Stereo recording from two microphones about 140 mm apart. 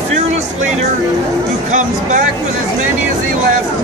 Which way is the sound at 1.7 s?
60° right (ahead or behind).